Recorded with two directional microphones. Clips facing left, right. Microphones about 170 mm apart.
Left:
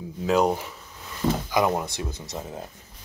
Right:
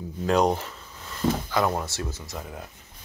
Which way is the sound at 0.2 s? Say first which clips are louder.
Even; 5° left (ahead or behind).